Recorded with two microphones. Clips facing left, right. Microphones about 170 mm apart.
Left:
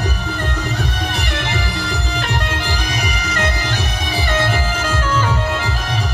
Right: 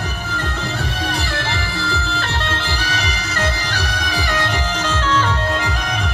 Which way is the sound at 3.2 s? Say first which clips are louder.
Left 1 dB; 30° right (ahead or behind).